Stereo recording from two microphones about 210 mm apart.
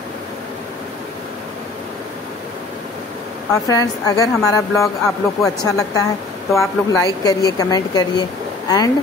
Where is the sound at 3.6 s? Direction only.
15° left (ahead or behind).